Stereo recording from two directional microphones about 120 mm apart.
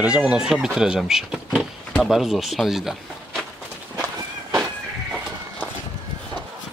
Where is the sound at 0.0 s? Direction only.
10° right (ahead or behind).